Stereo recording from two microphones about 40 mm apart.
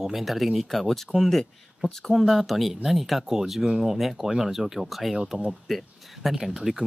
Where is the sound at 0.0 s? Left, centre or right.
Centre.